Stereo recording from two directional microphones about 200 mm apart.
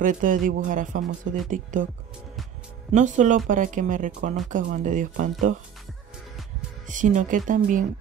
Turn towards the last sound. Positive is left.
turn(degrees=-40)  # may be behind; listen again after turning